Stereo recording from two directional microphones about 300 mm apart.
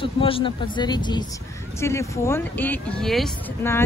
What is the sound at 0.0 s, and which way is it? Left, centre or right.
Speech, centre.